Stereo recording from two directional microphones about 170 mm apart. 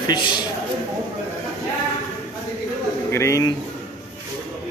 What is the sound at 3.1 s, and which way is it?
Speech, 15° left (ahead or behind).